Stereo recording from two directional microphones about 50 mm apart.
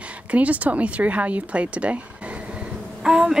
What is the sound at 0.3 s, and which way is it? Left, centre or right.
Speech, right.